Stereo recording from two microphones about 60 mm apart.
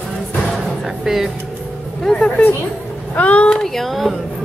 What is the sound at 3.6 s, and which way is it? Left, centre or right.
Music, centre.